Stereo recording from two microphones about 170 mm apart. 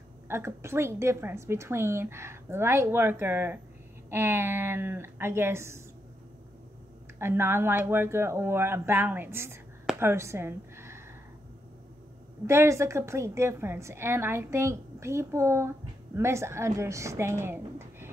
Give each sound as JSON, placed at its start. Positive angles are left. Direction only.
{"t": 0.3, "sound": "a woman's voice", "side_deg": -15}
{"t": 7.2, "sound": "a woman's voice", "side_deg": -15}
{"t": 12.4, "sound": "a woman's voice", "side_deg": -15}
{"t": 17.4, "sound": "a sound", "side_deg": -15}